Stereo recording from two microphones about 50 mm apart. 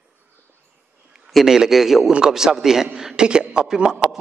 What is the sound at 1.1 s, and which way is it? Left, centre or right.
A man's voice, centre.